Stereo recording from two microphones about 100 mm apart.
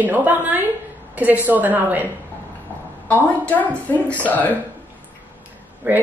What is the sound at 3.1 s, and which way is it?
A woman's voice, 15° left (ahead or behind).